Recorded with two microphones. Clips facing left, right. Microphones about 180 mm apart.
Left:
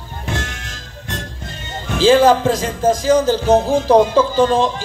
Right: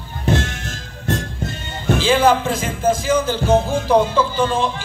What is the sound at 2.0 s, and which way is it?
Speech, 40° left (ahead or behind).